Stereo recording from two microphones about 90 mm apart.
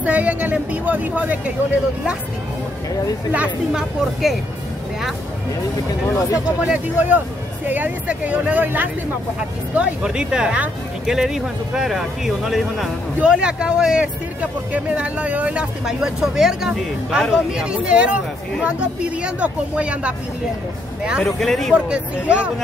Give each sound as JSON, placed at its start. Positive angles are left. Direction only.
{"t": 0.0, "sound": "speech", "side_deg": -15}
{"t": 3.3, "sound": "a woman's voice", "side_deg": -5}
{"t": 6.0, "sound": "speech", "side_deg": 35}
{"t": 6.3, "sound": "speech", "side_deg": -15}
{"t": 21.2, "sound": "a woman's voice", "side_deg": 5}
{"t": 21.7, "sound": "speech", "side_deg": -15}